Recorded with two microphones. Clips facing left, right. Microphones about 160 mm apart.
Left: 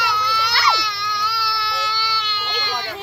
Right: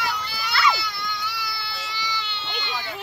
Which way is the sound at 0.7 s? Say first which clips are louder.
Left 4 dB; 80° left.